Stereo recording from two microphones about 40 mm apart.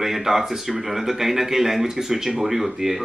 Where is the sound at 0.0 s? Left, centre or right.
Centre.